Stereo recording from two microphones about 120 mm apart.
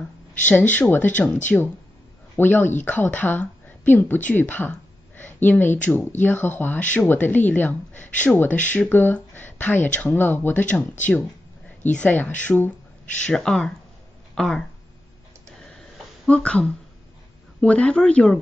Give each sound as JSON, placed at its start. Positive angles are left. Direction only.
{"t": 0.5, "sound": "a woman's voice", "side_deg": 15}
{"t": 16.3, "sound": "a woman's voice", "side_deg": 10}